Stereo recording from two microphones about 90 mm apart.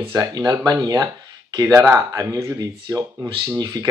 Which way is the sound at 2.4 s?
50° right (ahead or behind).